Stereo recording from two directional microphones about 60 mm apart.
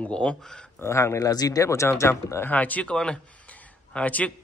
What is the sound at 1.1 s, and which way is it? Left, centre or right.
Speech, left.